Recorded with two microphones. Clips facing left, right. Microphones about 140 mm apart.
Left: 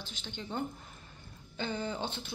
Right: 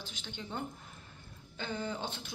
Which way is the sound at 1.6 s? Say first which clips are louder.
Left 2 dB; 5° right (ahead or behind).